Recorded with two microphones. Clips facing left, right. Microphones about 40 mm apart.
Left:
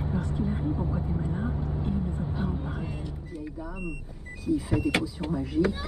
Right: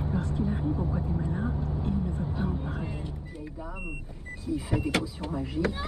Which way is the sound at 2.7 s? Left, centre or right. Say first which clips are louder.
Even; centre.